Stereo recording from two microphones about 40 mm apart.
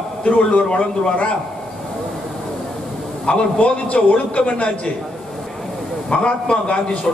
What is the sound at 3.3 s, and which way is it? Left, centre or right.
A man's voice, left.